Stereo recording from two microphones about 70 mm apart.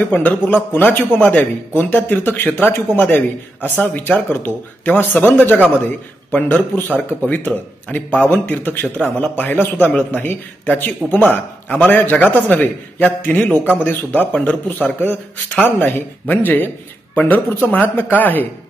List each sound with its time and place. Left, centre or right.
0.1 s a man's voice: left